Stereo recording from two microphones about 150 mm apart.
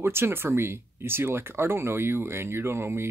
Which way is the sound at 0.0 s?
15° right (ahead or behind).